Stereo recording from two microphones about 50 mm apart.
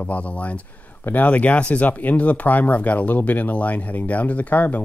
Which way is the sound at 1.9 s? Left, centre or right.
Left.